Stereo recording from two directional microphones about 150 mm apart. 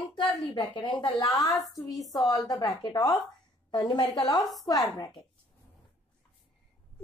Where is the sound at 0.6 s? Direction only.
30° left (ahead or behind).